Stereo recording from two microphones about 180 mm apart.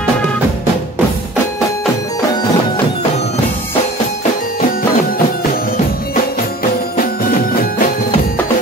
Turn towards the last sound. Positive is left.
turn(degrees=50)  # may be behind; listen again after turning